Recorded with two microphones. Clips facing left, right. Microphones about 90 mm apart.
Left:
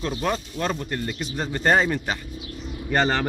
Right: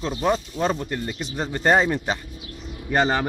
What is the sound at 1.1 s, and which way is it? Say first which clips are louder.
Speech: even; 20° right (ahead or behind).